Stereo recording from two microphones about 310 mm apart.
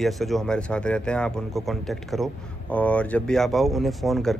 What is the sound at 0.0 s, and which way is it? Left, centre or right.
Speech, centre.